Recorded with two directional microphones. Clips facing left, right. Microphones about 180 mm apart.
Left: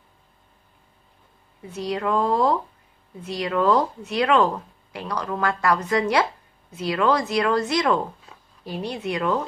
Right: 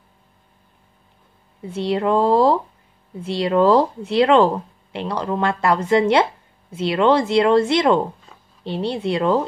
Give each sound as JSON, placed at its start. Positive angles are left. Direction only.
{"t": 1.7, "sound": "speech", "side_deg": -30}